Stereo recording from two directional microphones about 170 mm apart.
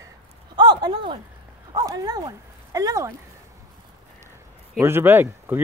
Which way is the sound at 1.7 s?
20° right (ahead or behind).